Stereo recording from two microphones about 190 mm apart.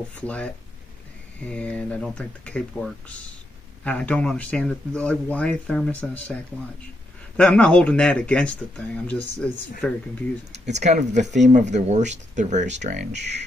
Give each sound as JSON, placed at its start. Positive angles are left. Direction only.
{"t": 0.2, "sound": "speech", "side_deg": 5}
{"t": 1.5, "sound": "speech", "side_deg": 5}
{"t": 10.5, "sound": "speech", "side_deg": -35}